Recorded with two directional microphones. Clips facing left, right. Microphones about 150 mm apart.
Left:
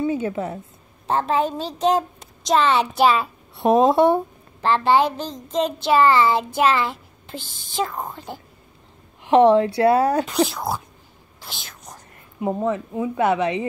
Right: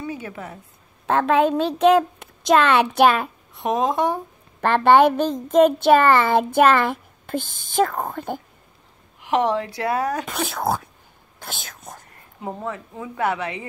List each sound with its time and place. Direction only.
0.0 s a woman's voice: 25° left (ahead or behind)
1.0 s a child's voice: 60° right (ahead or behind)
3.5 s speech: 35° left (ahead or behind)
4.6 s a child's voice: 55° right (ahead or behind)
9.2 s speech: 30° left (ahead or behind)
10.2 s a child's voice: 50° right (ahead or behind)
12.4 s speech: 20° left (ahead or behind)